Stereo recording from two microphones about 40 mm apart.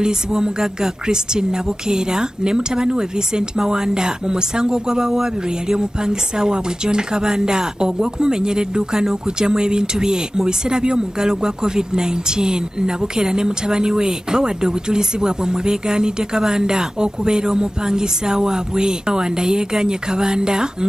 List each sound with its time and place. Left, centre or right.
0.0 s speech: centre